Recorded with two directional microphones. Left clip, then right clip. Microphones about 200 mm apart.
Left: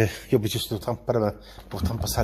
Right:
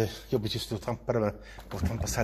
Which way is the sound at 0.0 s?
45° left (ahead or behind).